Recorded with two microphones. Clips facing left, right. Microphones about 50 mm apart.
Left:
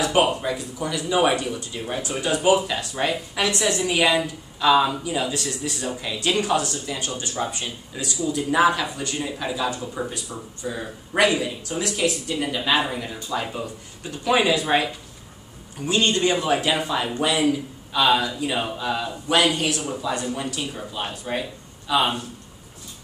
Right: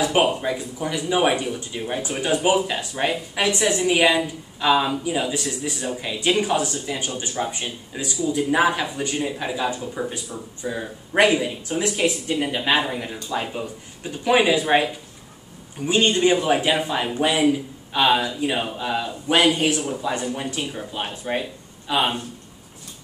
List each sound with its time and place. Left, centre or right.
0.0 s speech: centre
12.8 s speech: centre